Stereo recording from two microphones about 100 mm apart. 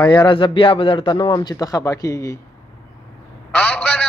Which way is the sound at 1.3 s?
40° left (ahead or behind).